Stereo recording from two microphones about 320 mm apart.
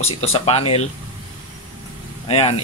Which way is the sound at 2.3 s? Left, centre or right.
Centre.